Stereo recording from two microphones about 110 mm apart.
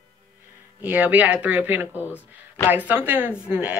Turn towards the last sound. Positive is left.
turn(degrees=-10)  # may be behind; listen again after turning